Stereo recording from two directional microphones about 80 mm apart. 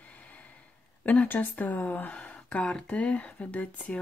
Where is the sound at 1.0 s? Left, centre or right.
Centre.